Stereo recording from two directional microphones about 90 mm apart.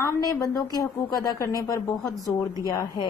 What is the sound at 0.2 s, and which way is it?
Speech, 40° left (ahead or behind).